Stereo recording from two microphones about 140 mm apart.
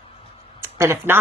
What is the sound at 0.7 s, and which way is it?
Speech, 20° right (ahead or behind).